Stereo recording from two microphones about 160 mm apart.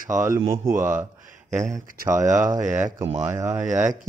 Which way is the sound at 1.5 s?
50° right (ahead or behind).